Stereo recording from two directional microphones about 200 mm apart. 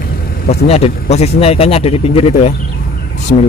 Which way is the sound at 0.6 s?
30° left (ahead or behind).